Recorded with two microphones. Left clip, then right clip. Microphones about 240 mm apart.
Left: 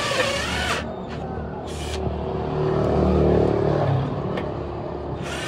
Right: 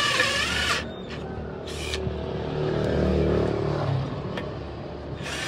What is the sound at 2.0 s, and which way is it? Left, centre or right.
Vehicle, centre.